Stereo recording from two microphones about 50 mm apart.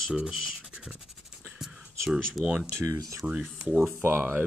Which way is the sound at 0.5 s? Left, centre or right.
Centre.